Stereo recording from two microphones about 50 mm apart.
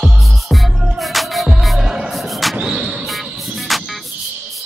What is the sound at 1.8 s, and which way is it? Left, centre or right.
Music, centre.